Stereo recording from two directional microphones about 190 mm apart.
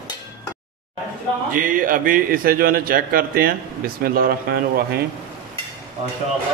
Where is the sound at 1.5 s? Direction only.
45° right (ahead or behind).